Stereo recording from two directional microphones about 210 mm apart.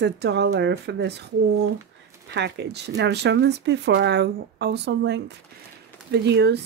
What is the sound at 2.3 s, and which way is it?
Speech, 55° right (ahead or behind).